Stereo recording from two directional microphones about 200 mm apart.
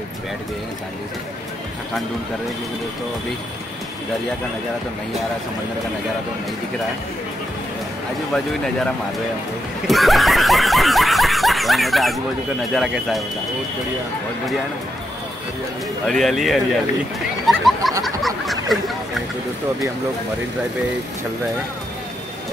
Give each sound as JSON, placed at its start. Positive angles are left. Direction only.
{"t": 9.8, "sound": "snicker", "side_deg": 0}
{"t": 12.7, "sound": "speech", "side_deg": 0}
{"t": 16.1, "sound": "speech", "side_deg": 0}
{"t": 17.5, "sound": "goat", "side_deg": 0}
{"t": 18.0, "sound": "a sound", "side_deg": 0}